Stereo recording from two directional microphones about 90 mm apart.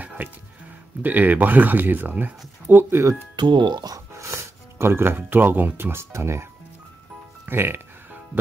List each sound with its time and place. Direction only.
0.0 s music: 15° right (ahead or behind)
1.0 s speech: 20° right (ahead or behind)
3.3 s speech: 60° right (ahead or behind)
4.2 s speech: 30° right (ahead or behind)
7.4 s music: 25° right (ahead or behind)